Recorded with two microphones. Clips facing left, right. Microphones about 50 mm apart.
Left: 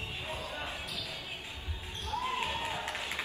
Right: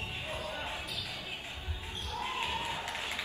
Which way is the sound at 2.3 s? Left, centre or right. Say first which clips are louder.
Left 1 dB; left.